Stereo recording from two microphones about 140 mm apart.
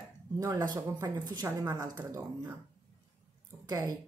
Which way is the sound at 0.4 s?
25° right (ahead or behind).